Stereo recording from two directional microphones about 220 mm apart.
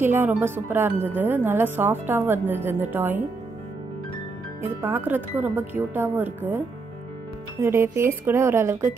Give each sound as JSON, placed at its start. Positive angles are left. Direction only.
{"t": 0.0, "sound": "speech", "side_deg": -10}
{"t": 4.6, "sound": "speech", "side_deg": -10}
{"t": 7.6, "sound": "speech", "side_deg": -10}